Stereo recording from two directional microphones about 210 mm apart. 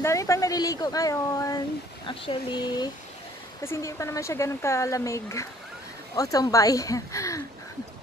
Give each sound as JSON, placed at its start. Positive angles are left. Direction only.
{"t": 0.0, "sound": "speech", "side_deg": 15}